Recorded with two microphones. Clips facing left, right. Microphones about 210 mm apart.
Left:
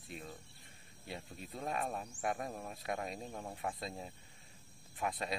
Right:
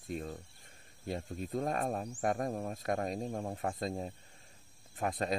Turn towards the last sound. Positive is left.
turn(degrees=-45)  # may be behind; listen again after turning